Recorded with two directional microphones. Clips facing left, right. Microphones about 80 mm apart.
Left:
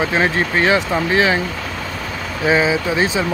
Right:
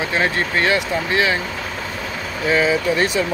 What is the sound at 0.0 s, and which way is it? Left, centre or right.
Speech, left.